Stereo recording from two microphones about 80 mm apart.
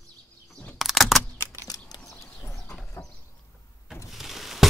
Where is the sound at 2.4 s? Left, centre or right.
Left.